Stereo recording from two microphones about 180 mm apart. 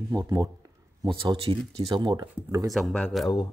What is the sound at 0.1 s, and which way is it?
Speech, 20° right (ahead or behind).